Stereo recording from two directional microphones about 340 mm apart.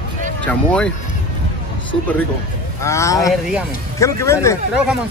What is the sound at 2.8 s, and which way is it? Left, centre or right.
A man's voice, centre.